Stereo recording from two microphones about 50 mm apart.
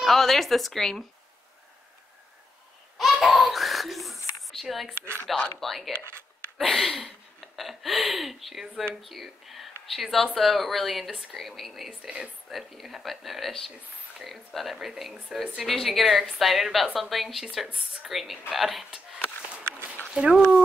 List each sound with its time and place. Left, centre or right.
0.0 s a woman's voice: centre
3.0 s laughter: centre
3.4 s a sound: centre
5.6 s a woman's voice: centre
6.0 s a sound: right
6.6 s a sound: centre
9.0 s a woman's voice: centre
12.0 s speech: centre
12.4 s a woman's voice: centre
20.2 s speech: centre